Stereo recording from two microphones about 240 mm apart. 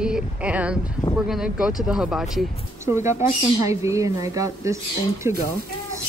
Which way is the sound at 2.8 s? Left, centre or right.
Centre.